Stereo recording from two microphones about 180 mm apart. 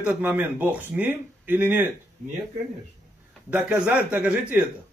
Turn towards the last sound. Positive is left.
turn(degrees=-5)  # may be behind; listen again after turning